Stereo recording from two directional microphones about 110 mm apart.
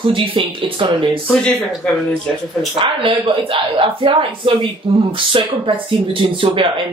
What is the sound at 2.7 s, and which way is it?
Speech, 55° right (ahead or behind).